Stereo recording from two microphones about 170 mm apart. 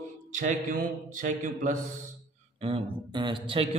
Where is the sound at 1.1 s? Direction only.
50° right (ahead or behind).